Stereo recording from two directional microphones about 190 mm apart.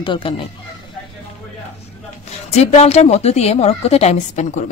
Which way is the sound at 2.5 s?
35° left (ahead or behind).